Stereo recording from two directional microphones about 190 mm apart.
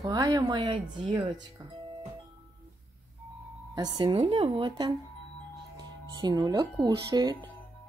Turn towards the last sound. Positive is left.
turn(degrees=-20)  # may be behind; listen again after turning